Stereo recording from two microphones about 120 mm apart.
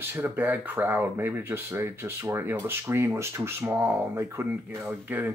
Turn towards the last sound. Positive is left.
turn(degrees=-15)  # may be behind; listen again after turning